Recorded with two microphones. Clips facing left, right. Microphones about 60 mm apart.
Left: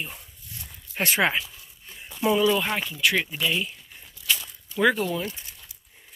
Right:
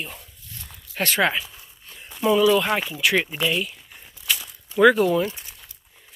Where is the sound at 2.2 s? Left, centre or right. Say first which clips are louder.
Right 4 dB; centre.